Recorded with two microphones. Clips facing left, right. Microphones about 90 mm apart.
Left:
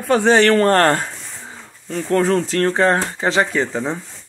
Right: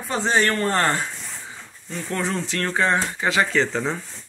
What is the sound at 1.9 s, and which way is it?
Speech, 50° left (ahead or behind).